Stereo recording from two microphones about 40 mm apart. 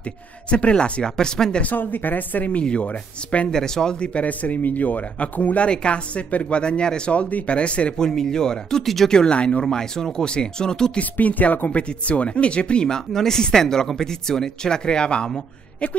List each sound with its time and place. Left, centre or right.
0.5 s speech: left
1.6 s speech: left
2.6 s speech: left
2.9 s speech: left
3.4 s speech: centre
4.1 s speech: left
5.7 s speech: left
7.2 s speech: left
8.0 s speech: centre
8.8 s speech: centre
9.1 s speech: left
11.0 s speech: left
11.7 s speech: left
12.8 s speech: centre